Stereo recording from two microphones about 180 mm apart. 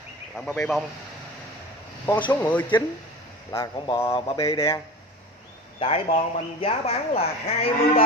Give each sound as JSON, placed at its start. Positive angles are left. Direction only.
{"t": 0.4, "sound": "speech", "side_deg": 5}
{"t": 2.4, "sound": "speech", "side_deg": 10}
{"t": 3.5, "sound": "speech", "side_deg": 20}
{"t": 5.8, "sound": "speech", "side_deg": 35}